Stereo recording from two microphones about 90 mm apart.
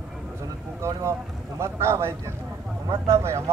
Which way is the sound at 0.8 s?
30° right (ahead or behind).